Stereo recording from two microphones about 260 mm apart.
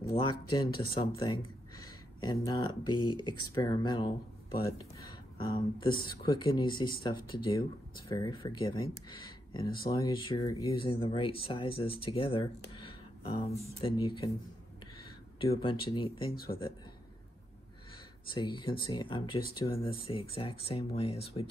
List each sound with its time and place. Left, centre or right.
0.0 s speech: centre
13.7 s speech: centre
15.6 s speech: centre
18.3 s speech: centre